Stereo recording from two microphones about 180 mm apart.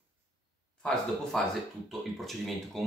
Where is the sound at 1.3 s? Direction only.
5° left (ahead or behind).